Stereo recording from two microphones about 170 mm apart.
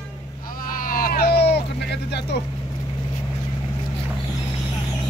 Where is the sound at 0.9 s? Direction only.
55° left (ahead or behind); by 2.3 s 80° left.